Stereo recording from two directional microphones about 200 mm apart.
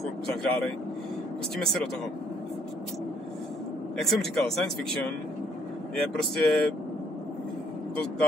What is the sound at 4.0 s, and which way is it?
Speech, centre (ahead or behind).